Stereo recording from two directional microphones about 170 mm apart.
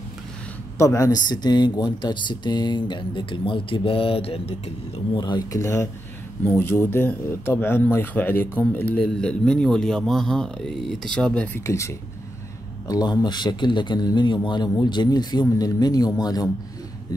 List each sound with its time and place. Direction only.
0.7 s speech: 20° left (ahead or behind)